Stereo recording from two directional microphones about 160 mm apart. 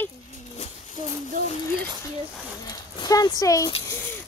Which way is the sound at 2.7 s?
25° left (ahead or behind).